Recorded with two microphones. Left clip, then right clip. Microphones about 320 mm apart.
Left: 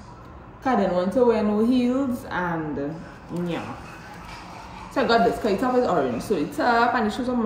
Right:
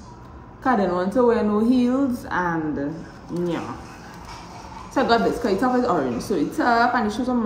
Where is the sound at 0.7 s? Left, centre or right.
Centre.